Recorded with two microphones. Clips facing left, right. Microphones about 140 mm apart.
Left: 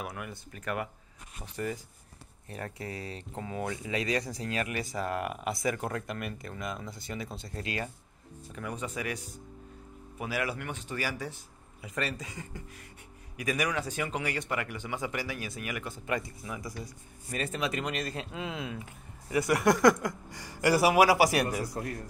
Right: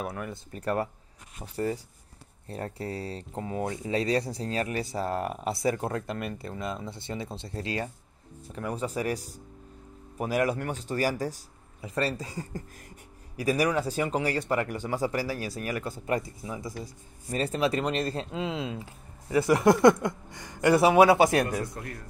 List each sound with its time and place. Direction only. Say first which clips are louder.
0.0 s speech: right 5 dB; 30° right (ahead or behind)
21.3 s a man's voice: right 3 dB; 15° left (ahead or behind)